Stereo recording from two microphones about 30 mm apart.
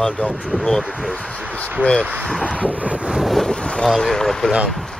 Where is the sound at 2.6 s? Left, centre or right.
Right.